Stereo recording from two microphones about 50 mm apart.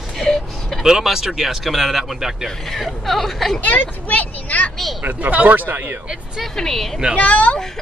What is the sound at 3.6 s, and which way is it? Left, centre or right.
Speech, left.